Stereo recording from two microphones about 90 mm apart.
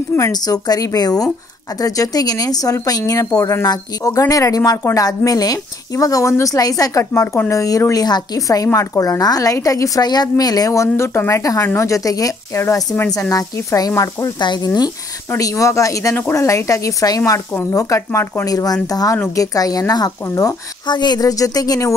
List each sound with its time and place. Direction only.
0.3 s a woman's voice: 45° left (ahead or behind)
14.4 s speech: 55° left (ahead or behind)
15.3 s a woman's voice: 35° left (ahead or behind)
18.5 s a woman's voice: 45° left (ahead or behind)
20.8 s speech: 55° left (ahead or behind)